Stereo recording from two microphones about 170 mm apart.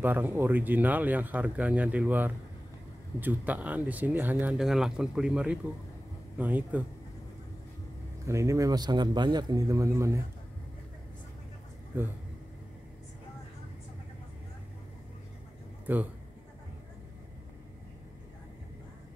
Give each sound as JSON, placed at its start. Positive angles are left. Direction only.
{"t": 0.0, "sound": "speech", "side_deg": -10}
{"t": 8.3, "sound": "speech", "side_deg": -15}
{"t": 11.9, "sound": "speech", "side_deg": -10}
{"t": 15.9, "sound": "speech", "side_deg": -10}